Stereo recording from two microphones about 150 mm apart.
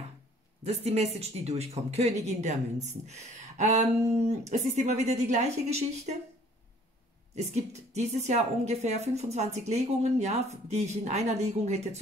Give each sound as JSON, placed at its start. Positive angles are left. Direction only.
{"t": 0.7, "sound": "a woman's voice", "side_deg": -45}
{"t": 7.3, "sound": "a woman's voice", "side_deg": -45}